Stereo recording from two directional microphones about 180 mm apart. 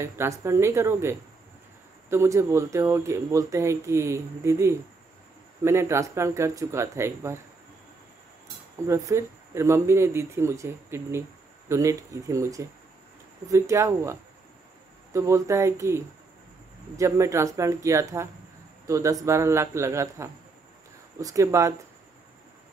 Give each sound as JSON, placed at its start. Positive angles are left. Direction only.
{"t": 0.0, "sound": "speech", "side_deg": -15}
{"t": 8.8, "sound": "speech", "side_deg": -15}
{"t": 15.1, "sound": "speech", "side_deg": -15}